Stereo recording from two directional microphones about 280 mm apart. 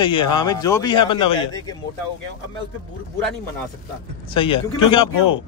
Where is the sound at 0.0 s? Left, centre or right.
Centre.